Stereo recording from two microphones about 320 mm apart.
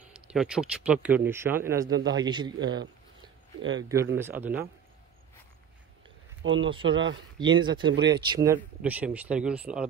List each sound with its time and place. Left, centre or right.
0.1 s speech: centre
3.9 s speech: centre
6.4 s speech: right
6.7 s speech: centre